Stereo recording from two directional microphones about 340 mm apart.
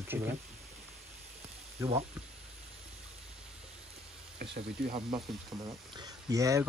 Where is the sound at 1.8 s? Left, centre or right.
Centre.